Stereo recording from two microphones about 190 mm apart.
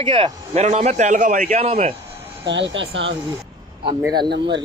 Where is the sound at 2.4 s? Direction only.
75° right (ahead or behind).